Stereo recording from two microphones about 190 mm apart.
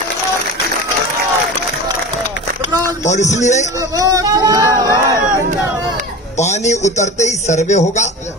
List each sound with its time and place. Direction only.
3.1 s a man's voice: 35° left (ahead or behind)
3.9 s a sound: 20° right (ahead or behind)
6.3 s a man's voice: 35° left (ahead or behind)